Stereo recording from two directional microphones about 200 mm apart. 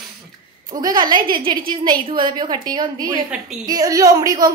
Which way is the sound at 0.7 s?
20° right (ahead or behind).